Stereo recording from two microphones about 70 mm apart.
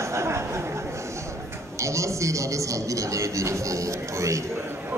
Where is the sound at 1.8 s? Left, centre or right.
Right.